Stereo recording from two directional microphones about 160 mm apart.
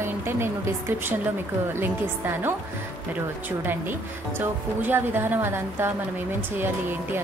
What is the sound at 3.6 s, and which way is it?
Speech, 15° right (ahead or behind).